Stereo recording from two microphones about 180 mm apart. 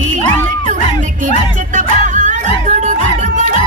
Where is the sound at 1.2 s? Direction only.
45° right (ahead or behind).